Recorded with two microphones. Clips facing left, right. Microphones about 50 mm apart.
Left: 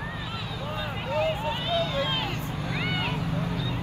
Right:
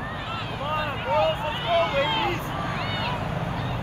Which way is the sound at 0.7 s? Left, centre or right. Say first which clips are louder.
Right 5 dB; right.